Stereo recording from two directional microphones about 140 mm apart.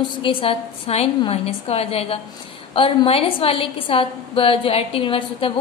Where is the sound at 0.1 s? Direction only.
40° left (ahead or behind).